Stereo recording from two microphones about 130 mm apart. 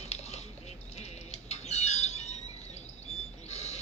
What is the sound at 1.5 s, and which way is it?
Squawk, 55° left (ahead or behind).